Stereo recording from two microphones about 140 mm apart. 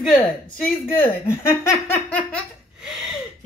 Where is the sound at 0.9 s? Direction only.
15° left (ahead or behind).